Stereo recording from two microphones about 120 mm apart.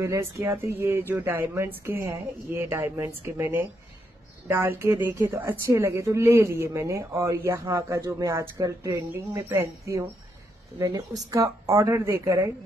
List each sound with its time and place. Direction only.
0.0 s a woman's voice: 25° right (ahead or behind)